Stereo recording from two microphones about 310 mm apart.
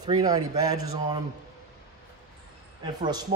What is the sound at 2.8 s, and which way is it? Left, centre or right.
Speech, centre.